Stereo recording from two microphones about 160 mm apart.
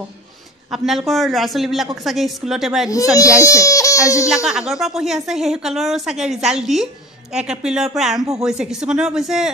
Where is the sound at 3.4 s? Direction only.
20° left (ahead or behind).